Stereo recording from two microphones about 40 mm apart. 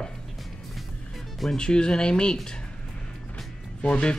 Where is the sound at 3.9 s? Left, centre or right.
Left.